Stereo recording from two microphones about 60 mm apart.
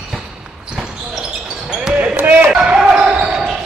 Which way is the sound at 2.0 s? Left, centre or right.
Right.